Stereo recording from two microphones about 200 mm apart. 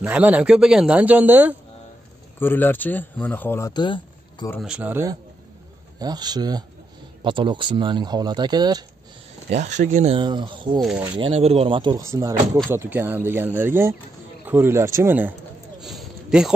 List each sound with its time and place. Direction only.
0.0 s speech: 5° right (ahead or behind)
2.4 s speech: 10° left (ahead or behind)
4.6 s speech: 5° right (ahead or behind)
5.9 s speech: 20° right (ahead or behind)
9.5 s speech: 35° right (ahead or behind)
10.2 s speech: 25° right (ahead or behind)
10.8 s speech: centre (ahead or behind)
11.1 s speech: 30° right (ahead or behind); by 15.3 s 10° right (ahead or behind)
15.8 s a sound: centre (ahead or behind)